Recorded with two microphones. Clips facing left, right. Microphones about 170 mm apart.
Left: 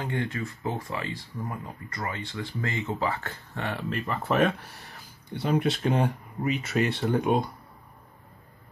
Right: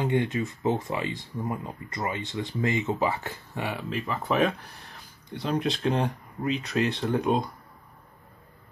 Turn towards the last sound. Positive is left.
turn(degrees=0)  # may be behind; listen again after turning